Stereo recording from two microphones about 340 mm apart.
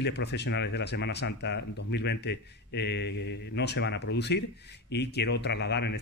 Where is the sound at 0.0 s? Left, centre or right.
Left.